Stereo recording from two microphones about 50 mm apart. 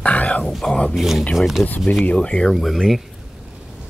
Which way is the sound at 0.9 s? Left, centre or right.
Centre.